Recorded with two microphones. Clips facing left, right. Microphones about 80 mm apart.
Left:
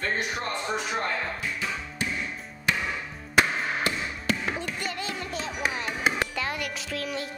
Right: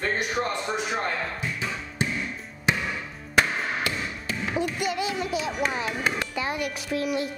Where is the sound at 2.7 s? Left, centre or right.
Centre.